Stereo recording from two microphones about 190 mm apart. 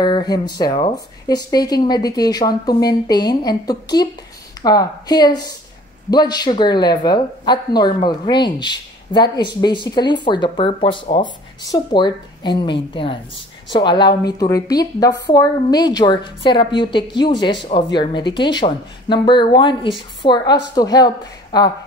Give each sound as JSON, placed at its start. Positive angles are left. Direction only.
{"t": 0.0, "sound": "speech", "side_deg": 20}